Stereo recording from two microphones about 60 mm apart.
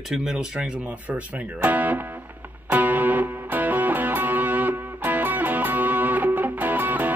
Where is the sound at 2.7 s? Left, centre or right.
Right.